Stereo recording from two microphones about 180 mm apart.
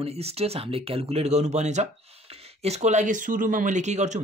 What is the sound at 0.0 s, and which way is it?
Speech, 35° right (ahead or behind).